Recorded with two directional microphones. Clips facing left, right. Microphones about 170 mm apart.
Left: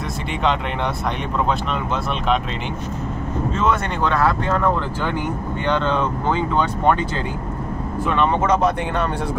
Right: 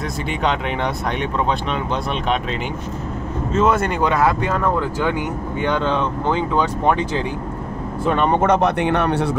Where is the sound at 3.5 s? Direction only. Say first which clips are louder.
Right 5 dB; 5° right (ahead or behind).